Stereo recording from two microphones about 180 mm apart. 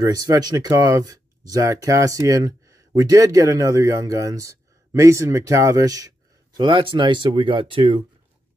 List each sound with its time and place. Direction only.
0.0 s speech: 20° right (ahead or behind)